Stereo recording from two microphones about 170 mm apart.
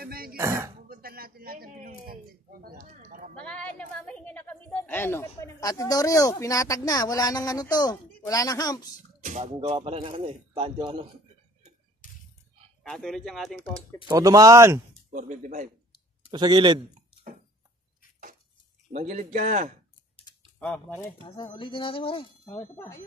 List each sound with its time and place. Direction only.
0.0 s throat clearing: 60° right (ahead or behind)
0.4 s throat clearing: 15° right (ahead or behind)
0.8 s a sound: 60° right (ahead or behind)
3.3 s a sound: 5° left (ahead or behind); by 8.8 s 20° left (ahead or behind)
9.2 s a man's voice: 45° right (ahead or behind)
12.0 s a sound: 50° left (ahead or behind)
12.8 s speech: centre (ahead or behind)
14.0 s speech: 20° right (ahead or behind)
15.0 s speech: 50° right (ahead or behind)
16.3 s speech: 25° right (ahead or behind)
18.9 s speech: 45° right (ahead or behind)
20.5 s speech: 5° left (ahead or behind)
21.2 s speech: 30° left (ahead or behind)
22.4 s speech: 15° left (ahead or behind)